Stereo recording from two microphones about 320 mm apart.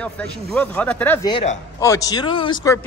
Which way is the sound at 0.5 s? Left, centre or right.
Centre.